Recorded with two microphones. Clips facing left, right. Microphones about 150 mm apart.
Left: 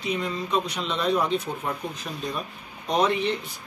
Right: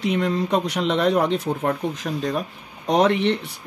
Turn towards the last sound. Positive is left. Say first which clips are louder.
# right 5 dB
turn(degrees=-75)  # may be behind; listen again after turning